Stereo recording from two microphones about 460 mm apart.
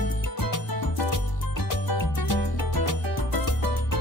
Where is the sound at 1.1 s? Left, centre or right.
Left.